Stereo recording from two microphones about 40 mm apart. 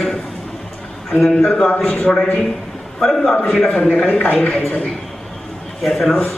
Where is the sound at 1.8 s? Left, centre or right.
Left.